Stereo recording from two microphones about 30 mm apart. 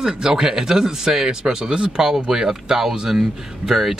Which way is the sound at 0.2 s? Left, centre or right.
Centre.